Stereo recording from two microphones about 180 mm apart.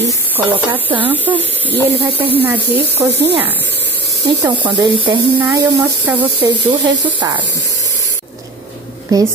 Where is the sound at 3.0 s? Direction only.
10° right (ahead or behind).